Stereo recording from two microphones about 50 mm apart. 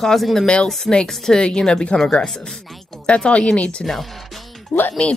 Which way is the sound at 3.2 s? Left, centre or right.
Left.